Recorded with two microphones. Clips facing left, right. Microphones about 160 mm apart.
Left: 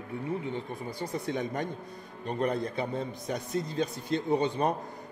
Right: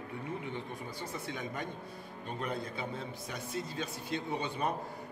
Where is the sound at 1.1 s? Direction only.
40° left (ahead or behind).